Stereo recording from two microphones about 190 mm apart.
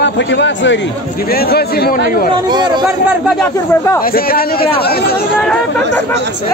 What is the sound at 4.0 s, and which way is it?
Speech, 50° left (ahead or behind).